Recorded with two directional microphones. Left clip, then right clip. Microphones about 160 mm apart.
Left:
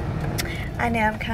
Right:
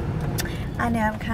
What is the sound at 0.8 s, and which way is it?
Speech, 20° right (ahead or behind).